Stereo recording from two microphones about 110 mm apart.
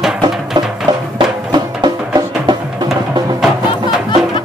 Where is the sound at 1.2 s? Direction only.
45° right (ahead or behind).